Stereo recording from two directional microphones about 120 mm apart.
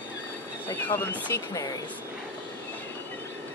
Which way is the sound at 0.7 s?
20° left (ahead or behind).